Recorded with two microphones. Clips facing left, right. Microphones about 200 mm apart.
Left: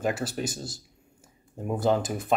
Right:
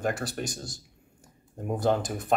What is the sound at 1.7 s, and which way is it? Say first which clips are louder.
Speech: left 1 dB; centre (ahead or behind).